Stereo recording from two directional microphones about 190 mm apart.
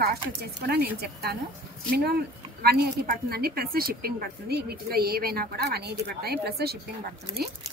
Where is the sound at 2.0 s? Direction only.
55° right (ahead or behind).